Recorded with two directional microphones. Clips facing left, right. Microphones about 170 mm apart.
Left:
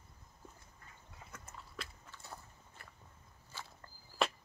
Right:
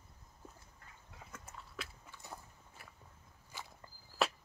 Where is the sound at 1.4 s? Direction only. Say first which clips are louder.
Even; 10° right (ahead or behind).